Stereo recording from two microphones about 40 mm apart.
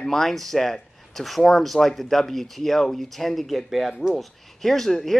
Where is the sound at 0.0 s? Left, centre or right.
Centre.